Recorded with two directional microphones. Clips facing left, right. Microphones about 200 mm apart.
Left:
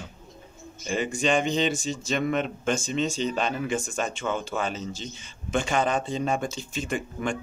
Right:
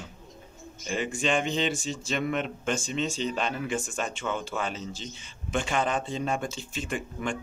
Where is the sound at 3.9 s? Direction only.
45° left (ahead or behind).